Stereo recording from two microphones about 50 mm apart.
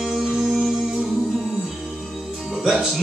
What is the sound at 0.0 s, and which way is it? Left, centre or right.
Music, centre.